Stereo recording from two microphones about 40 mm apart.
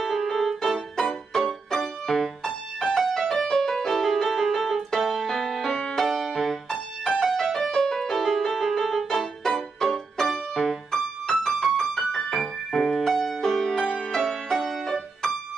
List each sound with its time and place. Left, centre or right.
0.0 s music: centre